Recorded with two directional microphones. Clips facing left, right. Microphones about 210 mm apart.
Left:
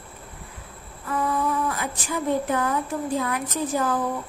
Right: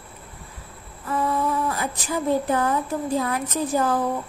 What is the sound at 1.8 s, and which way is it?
Speech, 35° right (ahead or behind).